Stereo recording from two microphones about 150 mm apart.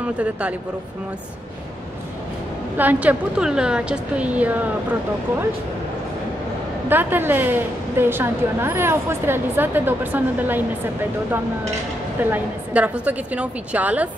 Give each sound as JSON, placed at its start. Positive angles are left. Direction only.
{"t": 0.0, "sound": "a woman's voice", "side_deg": -10}
{"t": 2.8, "sound": "a woman's voice", "side_deg": -10}
{"t": 6.9, "sound": "a woman's voice", "side_deg": -15}
{"t": 12.2, "sound": "a woman's voice", "side_deg": -10}